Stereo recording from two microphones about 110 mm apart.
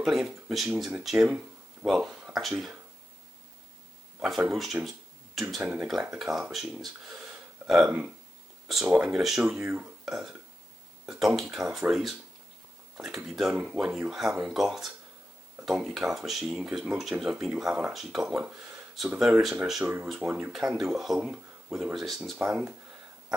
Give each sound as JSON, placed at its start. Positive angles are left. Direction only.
{"t": 0.0, "sound": "speech", "side_deg": -5}
{"t": 1.1, "sound": "a sound", "side_deg": -10}
{"t": 1.9, "sound": "speech", "side_deg": 0}
{"t": 4.5, "sound": "speech", "side_deg": 0}
{"t": 5.6, "sound": "speech", "side_deg": -10}
{"t": 10.0, "sound": "burping", "side_deg": -5}
{"t": 11.1, "sound": "speech", "side_deg": 0}
{"t": 19.8, "sound": "speech", "side_deg": -15}
{"t": 20.7, "sound": "speech", "side_deg": 0}
{"t": 22.4, "sound": "speech", "side_deg": -10}